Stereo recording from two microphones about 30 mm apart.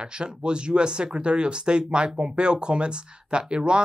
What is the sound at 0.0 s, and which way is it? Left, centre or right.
Speech, right.